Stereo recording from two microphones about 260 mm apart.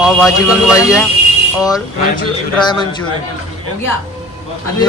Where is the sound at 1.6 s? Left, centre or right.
Centre.